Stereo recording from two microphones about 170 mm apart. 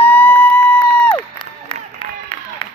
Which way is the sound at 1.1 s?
30° left (ahead or behind).